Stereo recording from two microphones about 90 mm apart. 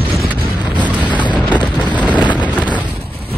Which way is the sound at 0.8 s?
15° right (ahead or behind).